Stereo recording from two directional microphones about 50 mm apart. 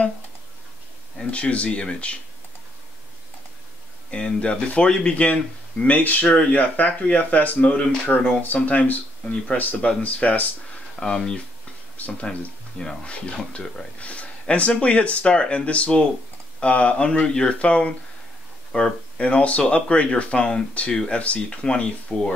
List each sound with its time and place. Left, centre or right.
1.2 s speech: left
4.1 s speech: centre
11.0 s speech: centre